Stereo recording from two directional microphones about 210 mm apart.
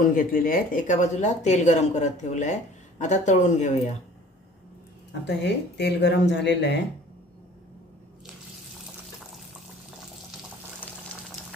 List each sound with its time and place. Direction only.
0.0 s speech: 40° left (ahead or behind)
5.2 s speech: 55° left (ahead or behind)